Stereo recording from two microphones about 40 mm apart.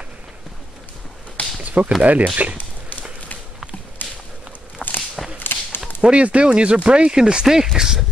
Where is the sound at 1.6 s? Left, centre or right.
Right.